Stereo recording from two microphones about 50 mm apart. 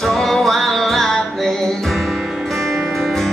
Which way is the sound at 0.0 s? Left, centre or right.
Centre.